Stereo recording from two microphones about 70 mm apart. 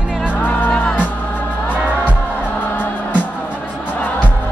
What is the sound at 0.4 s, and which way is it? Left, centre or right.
Music, left.